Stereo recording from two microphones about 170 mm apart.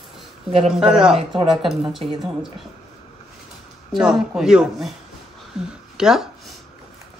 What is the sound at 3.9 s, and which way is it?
Speech, 5° right (ahead or behind).